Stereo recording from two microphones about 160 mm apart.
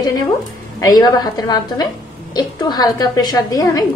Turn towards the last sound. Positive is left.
turn(degrees=20)  # may be behind; listen again after turning